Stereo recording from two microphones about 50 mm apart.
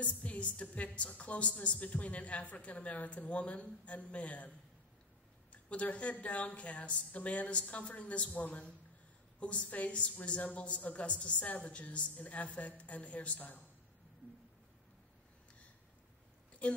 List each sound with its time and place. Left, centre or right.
0.0 s a woman's voice: left
5.5 s a woman's voice: left